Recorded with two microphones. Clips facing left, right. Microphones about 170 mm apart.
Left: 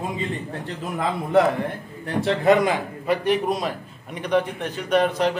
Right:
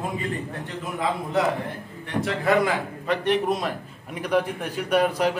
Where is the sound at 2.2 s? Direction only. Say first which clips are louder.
Left 4 dB; 25° left (ahead or behind).